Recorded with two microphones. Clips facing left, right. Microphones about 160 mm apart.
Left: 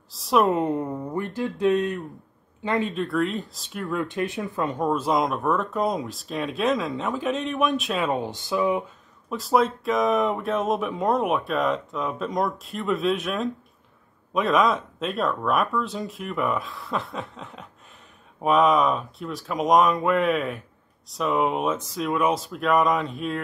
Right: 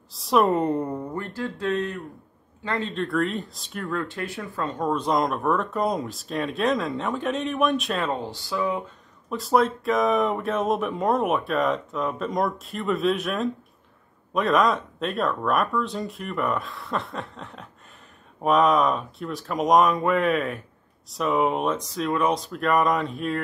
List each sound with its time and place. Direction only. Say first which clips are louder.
0.1 s speech: even; centre (ahead or behind)
1.1 s speech: left 3 dB; 20° left (ahead or behind)
2.9 s speech: even; centre (ahead or behind)
3.9 s speech: left 4 dB; 15° left (ahead or behind)
4.8 s speech: even; 5° left (ahead or behind)
8.1 s speech: left 3 dB; 20° left (ahead or behind)
9.3 s speech: even; centre (ahead or behind)